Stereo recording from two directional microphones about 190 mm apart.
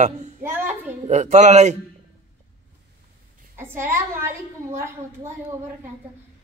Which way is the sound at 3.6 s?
15° right (ahead or behind).